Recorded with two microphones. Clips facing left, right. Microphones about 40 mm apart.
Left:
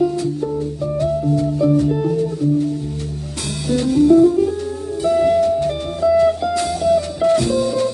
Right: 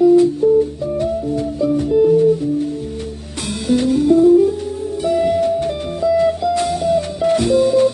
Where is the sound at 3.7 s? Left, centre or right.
Right.